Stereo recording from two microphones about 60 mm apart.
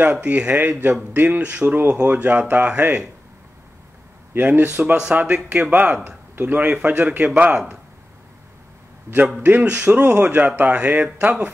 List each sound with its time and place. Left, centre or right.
0.0 s speech: right
4.3 s speech: right
7.2 s speech: right
9.4 s speech: right